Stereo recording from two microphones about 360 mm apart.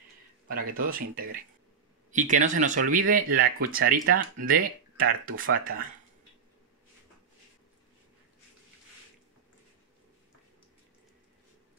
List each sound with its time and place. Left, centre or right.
0.5 s speech: right
2.0 s speech: centre